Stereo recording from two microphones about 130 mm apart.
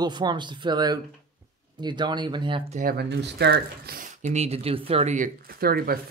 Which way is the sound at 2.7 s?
80° right.